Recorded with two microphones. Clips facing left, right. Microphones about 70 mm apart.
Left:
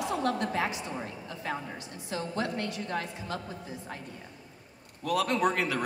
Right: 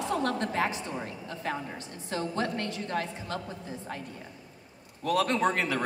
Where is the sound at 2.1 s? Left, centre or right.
Right.